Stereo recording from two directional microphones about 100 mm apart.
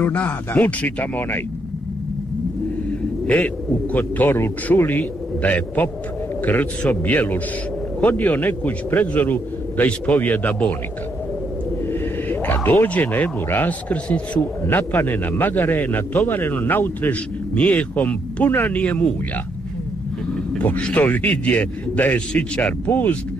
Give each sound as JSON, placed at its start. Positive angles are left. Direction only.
{"t": 0.0, "sound": "a man's voice", "side_deg": 20}
{"t": 3.3, "sound": "a man's voice", "side_deg": 15}
{"t": 11.8, "sound": "a sound", "side_deg": 20}
{"t": 12.8, "sound": "a man's voice", "side_deg": 15}
{"t": 20.5, "sound": "a man's voice", "side_deg": 10}